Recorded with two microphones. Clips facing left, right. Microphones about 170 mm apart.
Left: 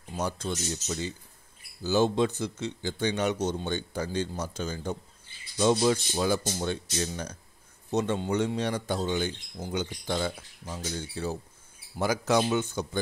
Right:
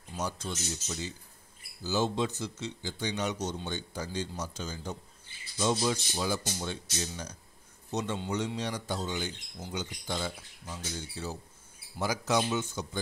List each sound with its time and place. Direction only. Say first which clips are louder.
0.1 s speech: left 4 dB; 55° left (ahead or behind)